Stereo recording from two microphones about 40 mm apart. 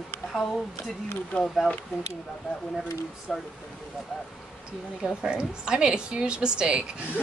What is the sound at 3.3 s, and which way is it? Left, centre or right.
Speech, centre.